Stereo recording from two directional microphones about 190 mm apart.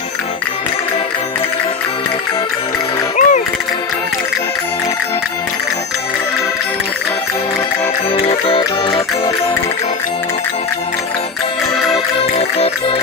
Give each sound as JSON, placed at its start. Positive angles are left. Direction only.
{"t": 3.2, "sound": "music", "side_deg": 40}
{"t": 8.2, "sound": "music", "side_deg": 30}